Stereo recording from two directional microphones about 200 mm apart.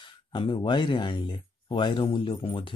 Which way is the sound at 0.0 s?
25° left (ahead or behind).